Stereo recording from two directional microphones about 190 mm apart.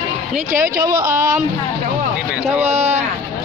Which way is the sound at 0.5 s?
45° right (ahead or behind).